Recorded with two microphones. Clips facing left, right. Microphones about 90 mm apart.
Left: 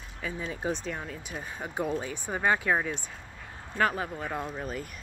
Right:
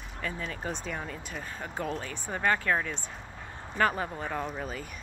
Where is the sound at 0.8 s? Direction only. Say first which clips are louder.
Even; centre (ahead or behind).